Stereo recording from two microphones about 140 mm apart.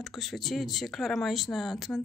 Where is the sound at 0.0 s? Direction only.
Centre (ahead or behind).